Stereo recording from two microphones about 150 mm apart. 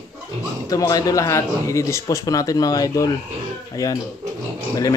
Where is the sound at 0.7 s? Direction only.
25° left (ahead or behind).